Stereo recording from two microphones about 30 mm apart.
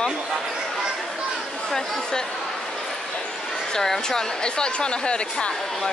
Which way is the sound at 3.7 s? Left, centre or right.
Centre.